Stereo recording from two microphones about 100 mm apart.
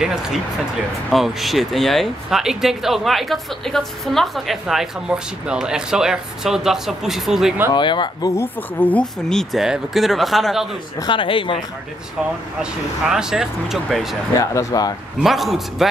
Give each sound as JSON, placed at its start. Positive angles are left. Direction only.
{"t": 0.0, "sound": "speech", "side_deg": -5}
{"t": 7.7, "sound": "speech", "side_deg": 50}
{"t": 8.4, "sound": "speech", "side_deg": 20}
{"t": 9.3, "sound": "speech", "side_deg": 0}
{"t": 11.1, "sound": "speech", "side_deg": 60}
{"t": 13.0, "sound": "speech", "side_deg": -5}
{"t": 14.4, "sound": "speech", "side_deg": 35}
{"t": 15.2, "sound": "speech", "side_deg": 0}